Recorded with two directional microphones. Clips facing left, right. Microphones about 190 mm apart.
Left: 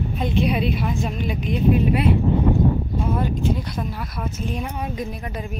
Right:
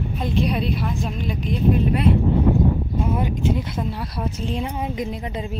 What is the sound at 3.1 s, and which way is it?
Speech, 20° right (ahead or behind).